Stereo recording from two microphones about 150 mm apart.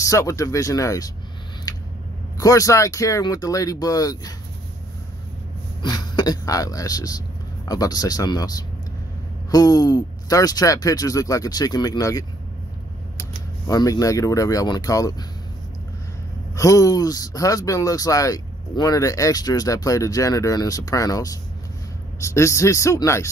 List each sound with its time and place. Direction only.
0.0 s speech: 20° left (ahead or behind)
1.7 s a sound: 25° left (ahead or behind)
2.3 s speech: 25° left (ahead or behind)
5.8 s speech: 30° left (ahead or behind)
16.5 s speech: 20° left (ahead or behind)